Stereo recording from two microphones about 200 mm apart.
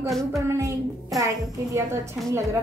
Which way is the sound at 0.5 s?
15° right (ahead or behind).